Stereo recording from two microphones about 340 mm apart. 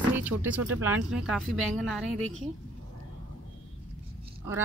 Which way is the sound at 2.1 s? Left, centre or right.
Right.